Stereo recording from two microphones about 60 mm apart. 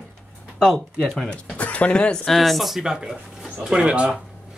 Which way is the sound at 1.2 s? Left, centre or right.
Centre.